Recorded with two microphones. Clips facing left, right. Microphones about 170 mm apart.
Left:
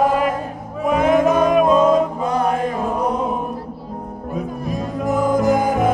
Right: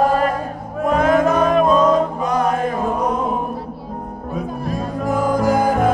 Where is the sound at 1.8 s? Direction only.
30° left (ahead or behind).